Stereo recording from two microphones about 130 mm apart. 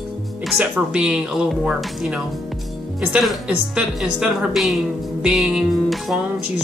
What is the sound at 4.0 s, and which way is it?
Speech, 5° right (ahead or behind).